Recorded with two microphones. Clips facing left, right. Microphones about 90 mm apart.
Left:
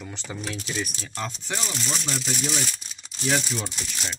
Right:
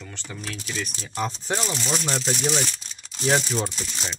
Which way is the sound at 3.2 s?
35° right (ahead or behind).